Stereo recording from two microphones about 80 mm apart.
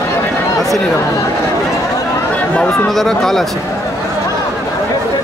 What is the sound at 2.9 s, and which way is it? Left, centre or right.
Speech, centre.